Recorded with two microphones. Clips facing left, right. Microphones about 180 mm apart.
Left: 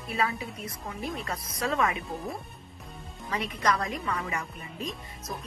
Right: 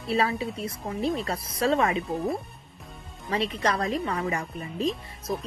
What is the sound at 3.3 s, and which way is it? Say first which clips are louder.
A woman's voice: right 2 dB; 30° right (ahead or behind).